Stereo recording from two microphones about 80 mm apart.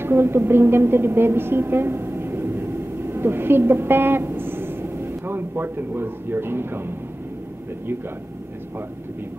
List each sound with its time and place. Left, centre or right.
0.0 s a woman's voice: right